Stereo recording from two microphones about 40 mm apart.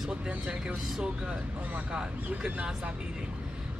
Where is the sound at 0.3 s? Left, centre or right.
Right.